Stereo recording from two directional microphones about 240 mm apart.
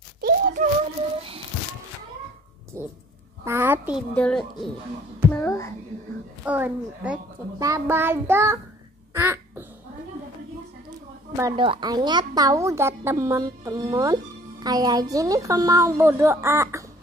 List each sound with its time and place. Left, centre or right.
0.2 s a sound: right
2.8 s dog: centre
3.4 s a sound: centre
4.1 s speech: centre
6.4 s a woman's voice: centre
9.1 s quack: centre
11.3 s a woman's voice: centre